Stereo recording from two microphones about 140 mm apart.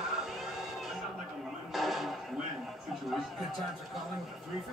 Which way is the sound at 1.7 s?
Centre (ahead or behind).